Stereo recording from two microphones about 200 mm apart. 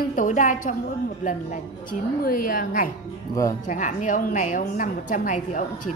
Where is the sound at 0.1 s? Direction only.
40° left (ahead or behind).